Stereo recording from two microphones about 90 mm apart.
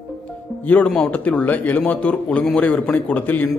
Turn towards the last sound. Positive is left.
turn(degrees=20)  # may be behind; listen again after turning